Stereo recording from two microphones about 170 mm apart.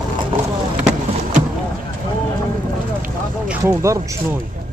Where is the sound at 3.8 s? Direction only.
20° right (ahead or behind).